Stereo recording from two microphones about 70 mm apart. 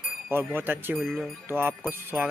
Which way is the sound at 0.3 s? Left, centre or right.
Right.